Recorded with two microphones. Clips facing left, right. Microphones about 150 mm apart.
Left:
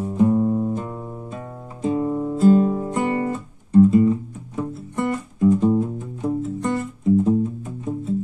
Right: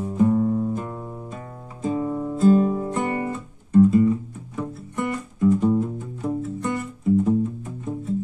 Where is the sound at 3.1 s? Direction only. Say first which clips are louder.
Left 3 dB; 30° left (ahead or behind).